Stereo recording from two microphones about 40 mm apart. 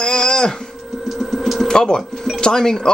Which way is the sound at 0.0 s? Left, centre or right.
Centre.